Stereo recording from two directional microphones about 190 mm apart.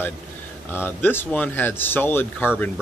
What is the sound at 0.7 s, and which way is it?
Speech, 10° left (ahead or behind).